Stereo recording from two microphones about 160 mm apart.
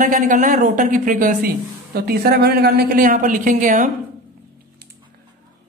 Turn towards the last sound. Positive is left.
turn(degrees=-55)  # may be behind; listen again after turning